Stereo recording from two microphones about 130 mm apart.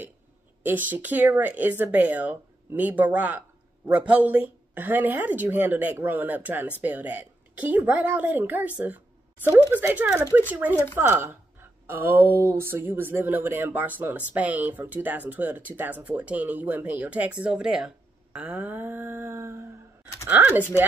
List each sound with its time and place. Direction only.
0.7 s speech: 15° right (ahead or behind)